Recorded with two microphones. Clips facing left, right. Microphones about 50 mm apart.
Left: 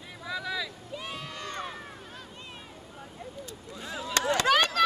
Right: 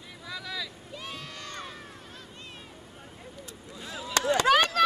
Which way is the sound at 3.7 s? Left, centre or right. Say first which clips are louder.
Left 2 dB; left.